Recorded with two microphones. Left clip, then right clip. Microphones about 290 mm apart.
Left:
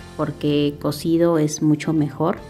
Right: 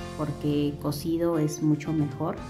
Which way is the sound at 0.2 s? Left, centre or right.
Centre.